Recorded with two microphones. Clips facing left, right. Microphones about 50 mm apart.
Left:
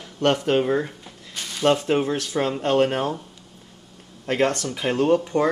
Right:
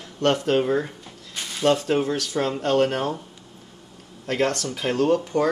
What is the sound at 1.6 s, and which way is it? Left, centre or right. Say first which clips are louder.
Speech: left 1 dB; centre.